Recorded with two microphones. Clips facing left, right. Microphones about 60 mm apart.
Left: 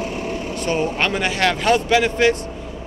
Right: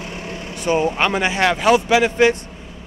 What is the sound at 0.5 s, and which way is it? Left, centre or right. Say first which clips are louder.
A man's voice: right 4 dB; centre.